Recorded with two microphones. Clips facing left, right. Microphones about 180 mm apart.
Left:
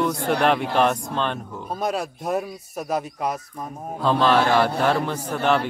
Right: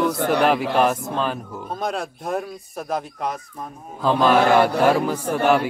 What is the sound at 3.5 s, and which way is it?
A man's voice, 5° right (ahead or behind).